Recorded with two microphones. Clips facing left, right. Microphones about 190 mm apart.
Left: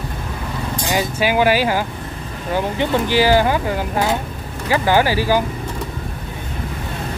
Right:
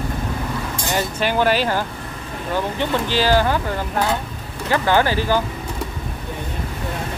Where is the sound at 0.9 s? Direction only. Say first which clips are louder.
Left 3 dB; 10° left (ahead or behind).